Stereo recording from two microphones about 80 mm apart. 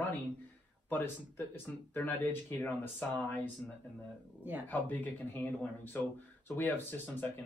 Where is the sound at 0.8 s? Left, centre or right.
Left.